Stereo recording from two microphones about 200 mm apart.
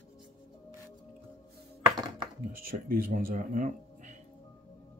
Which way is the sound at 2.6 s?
45° right (ahead or behind).